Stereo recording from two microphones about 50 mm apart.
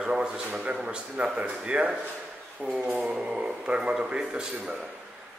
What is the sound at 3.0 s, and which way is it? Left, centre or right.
A man's voice, centre.